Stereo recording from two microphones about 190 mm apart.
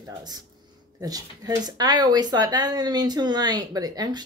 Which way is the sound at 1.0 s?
20° right (ahead or behind).